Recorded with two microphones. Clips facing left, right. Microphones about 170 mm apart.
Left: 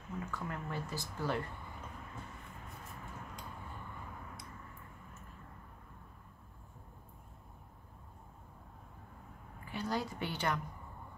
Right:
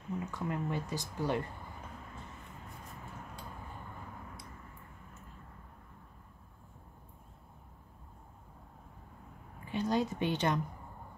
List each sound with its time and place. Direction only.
0.2 s speech: 20° right (ahead or behind)
9.7 s a woman's voice: 20° right (ahead or behind)